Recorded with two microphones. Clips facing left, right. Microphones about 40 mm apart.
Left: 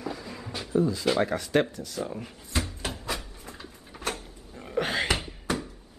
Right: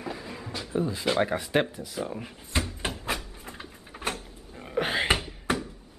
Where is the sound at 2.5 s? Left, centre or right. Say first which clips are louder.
Right 1 dB; right.